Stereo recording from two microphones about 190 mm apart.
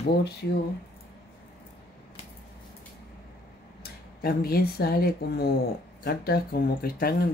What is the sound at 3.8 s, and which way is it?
Speech, 50° left (ahead or behind).